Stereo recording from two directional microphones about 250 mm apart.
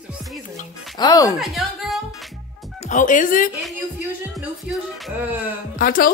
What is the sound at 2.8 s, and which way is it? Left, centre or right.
Speech, left.